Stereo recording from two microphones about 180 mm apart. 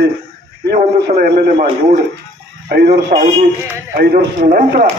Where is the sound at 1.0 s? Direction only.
60° right (ahead or behind).